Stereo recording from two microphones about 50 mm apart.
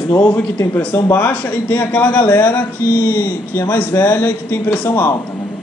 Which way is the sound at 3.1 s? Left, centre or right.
Left.